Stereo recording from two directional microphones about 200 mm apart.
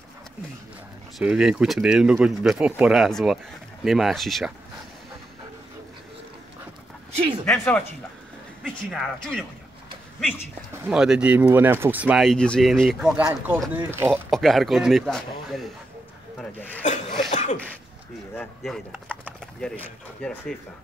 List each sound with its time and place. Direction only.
1.1 s speech: 5° right (ahead or behind)
7.4 s speech: 5° left (ahead or behind)
8.9 s speech: 5° left (ahead or behind)
10.7 s speech: 5° right (ahead or behind)
14.3 s speech: centre (ahead or behind)
16.8 s speech: 40° left (ahead or behind)
17.3 s throat clearing: 40° left (ahead or behind)
18.3 s speech: 5° left (ahead or behind)